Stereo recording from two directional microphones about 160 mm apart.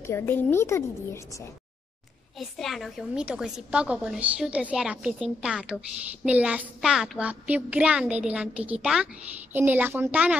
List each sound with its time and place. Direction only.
0.0 s a woman's voice: 15° left (ahead or behind)
2.3 s a woman's voice: centre (ahead or behind)